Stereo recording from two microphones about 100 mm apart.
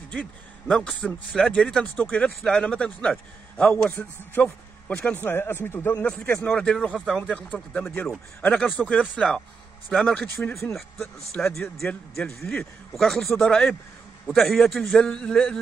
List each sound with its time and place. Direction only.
0.1 s a man's voice: 10° left (ahead or behind)
5.9 s a man's voice: 10° left (ahead or behind)
6.9 s speech: 10° right (ahead or behind)
7.2 s a man's voice: 10° left (ahead or behind)